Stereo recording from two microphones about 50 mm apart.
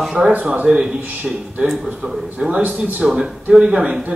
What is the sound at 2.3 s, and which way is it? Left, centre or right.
A man's voice, centre.